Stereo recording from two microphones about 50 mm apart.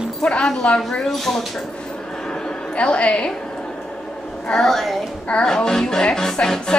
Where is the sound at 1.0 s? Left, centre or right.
Centre.